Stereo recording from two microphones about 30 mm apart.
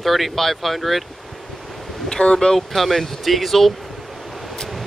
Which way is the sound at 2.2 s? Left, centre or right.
Left.